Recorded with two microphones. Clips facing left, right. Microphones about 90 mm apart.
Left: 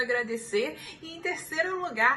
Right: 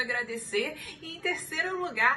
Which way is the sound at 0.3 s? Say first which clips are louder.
Left 3 dB; 25° left (ahead or behind).